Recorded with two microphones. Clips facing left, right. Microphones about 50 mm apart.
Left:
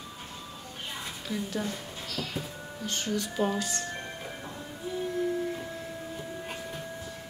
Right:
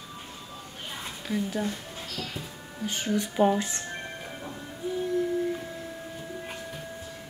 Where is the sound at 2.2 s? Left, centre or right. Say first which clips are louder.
Left 1 dB; centre.